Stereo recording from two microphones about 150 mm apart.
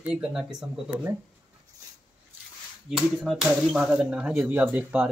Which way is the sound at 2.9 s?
5° right (ahead or behind).